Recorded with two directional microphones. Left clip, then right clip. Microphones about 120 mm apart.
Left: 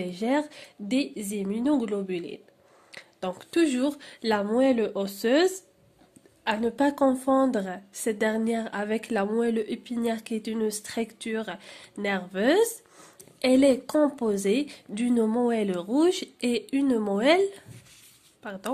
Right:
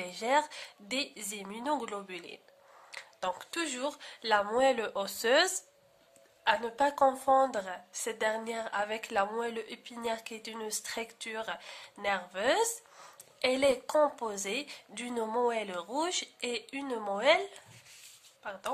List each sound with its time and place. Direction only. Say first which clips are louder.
0.0 s a woman's voice: left 2 dB; 5° left (ahead or behind); by 4.5 s 25° left (ahead or behind)
4.5 s speech: left 4 dB; 10° left (ahead or behind)
6.4 s a woman's voice: left 3 dB; 25° left (ahead or behind)
16.3 s a woman's voice: left 9 dB; 35° left (ahead or behind)